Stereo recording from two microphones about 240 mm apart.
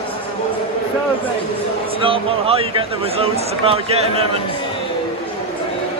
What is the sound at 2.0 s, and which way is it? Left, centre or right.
Speech, right.